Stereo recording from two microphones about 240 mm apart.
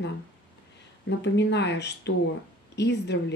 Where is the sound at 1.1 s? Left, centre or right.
Left.